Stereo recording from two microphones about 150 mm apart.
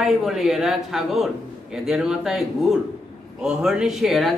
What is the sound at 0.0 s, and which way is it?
A man's voice, centre (ahead or behind).